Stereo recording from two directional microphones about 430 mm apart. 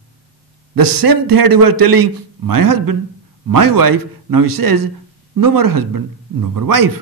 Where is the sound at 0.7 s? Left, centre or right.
Right.